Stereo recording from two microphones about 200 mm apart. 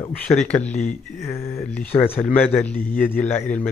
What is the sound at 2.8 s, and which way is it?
Speech, 45° left (ahead or behind).